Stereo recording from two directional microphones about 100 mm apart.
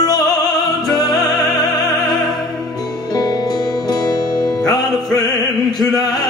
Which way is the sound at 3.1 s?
40° left (ahead or behind).